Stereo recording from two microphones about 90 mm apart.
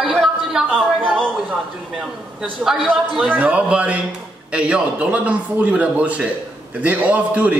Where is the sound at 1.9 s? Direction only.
5° right (ahead or behind).